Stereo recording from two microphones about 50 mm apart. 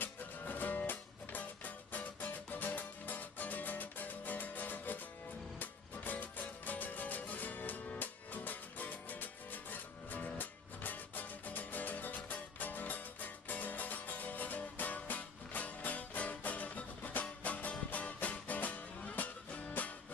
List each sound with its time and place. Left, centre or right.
0.0 s music: left